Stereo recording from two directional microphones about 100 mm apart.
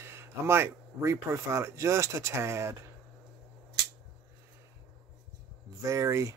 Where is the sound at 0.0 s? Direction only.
25° right (ahead or behind).